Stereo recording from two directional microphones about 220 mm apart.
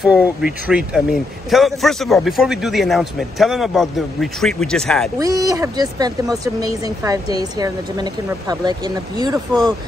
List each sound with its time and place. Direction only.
0.0 s speech: 5° right (ahead or behind)
5.2 s speech: 15° right (ahead or behind)